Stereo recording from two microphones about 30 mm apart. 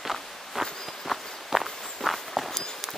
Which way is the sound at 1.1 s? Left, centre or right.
Centre.